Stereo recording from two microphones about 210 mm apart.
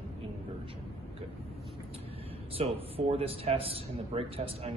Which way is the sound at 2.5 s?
30° right (ahead or behind).